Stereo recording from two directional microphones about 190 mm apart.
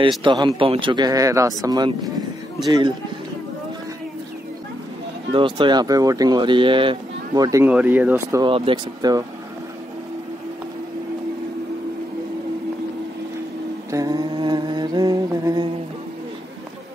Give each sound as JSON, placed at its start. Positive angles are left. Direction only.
{"t": 0.2, "sound": "speech", "side_deg": -25}
{"t": 5.3, "sound": "speech", "side_deg": -25}
{"t": 7.6, "sound": "speech", "side_deg": -10}
{"t": 8.4, "sound": "speech", "side_deg": -25}
{"t": 13.9, "sound": "humming", "side_deg": -20}